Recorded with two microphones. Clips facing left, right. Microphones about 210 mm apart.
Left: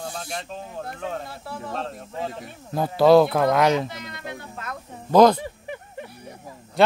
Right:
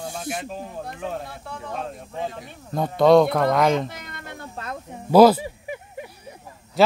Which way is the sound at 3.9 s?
55° right (ahead or behind).